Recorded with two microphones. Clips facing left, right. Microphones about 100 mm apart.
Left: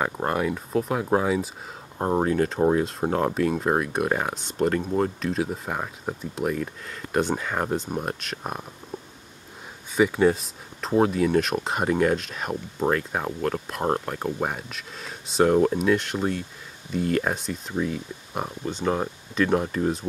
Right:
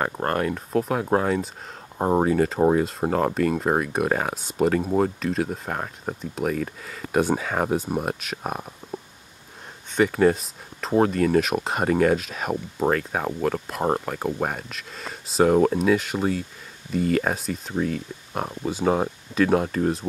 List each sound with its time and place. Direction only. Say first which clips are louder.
0.0 s speech: right 1 dB; 5° left (ahead or behind)
2.0 s speech: right 2 dB; 10° right (ahead or behind)
9.9 s speech: right 1 dB; centre (ahead or behind)